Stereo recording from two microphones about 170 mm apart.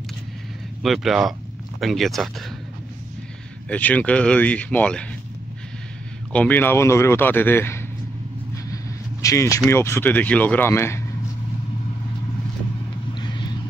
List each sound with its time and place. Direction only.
0.8 s speech: centre (ahead or behind)
3.6 s a man's voice: 10° left (ahead or behind)
6.3 s a man's voice: 10° left (ahead or behind)
9.2 s a man's voice: 20° left (ahead or behind)
13.1 s vehicle: 25° left (ahead or behind)